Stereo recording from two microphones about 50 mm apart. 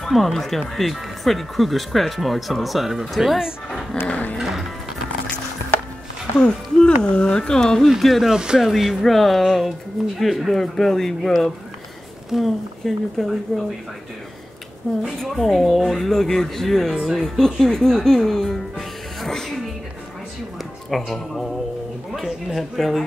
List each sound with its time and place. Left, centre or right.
0.0 s speech: centre
4.1 s music: left
6.3 s speech: left
7.9 s speech: centre
12.3 s speech: centre
15.0 s speech: centre
20.5 s speech: centre